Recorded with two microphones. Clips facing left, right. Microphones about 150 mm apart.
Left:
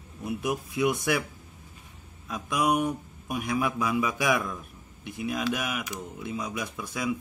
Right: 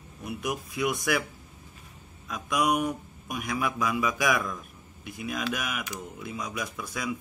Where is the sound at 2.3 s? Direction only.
30° left (ahead or behind).